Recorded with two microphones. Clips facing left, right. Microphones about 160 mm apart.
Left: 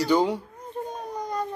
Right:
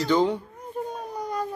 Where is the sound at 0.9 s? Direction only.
10° right (ahead or behind).